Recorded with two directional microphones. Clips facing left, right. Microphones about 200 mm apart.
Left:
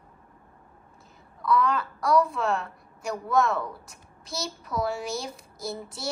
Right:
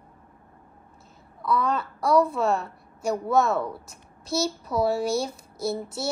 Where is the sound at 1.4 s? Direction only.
25° right (ahead or behind).